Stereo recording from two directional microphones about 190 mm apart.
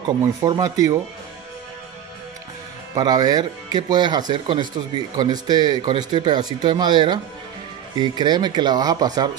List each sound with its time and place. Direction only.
0.2 s speech: 15° right (ahead or behind)
2.9 s speech: 20° right (ahead or behind)
8.2 s speech: 25° right (ahead or behind)